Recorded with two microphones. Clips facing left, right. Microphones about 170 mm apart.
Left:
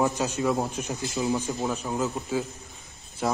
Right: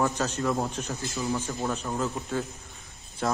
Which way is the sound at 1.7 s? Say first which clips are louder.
Even; 5° left (ahead or behind).